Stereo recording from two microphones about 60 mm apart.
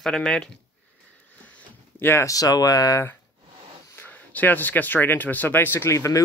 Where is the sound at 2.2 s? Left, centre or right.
Left.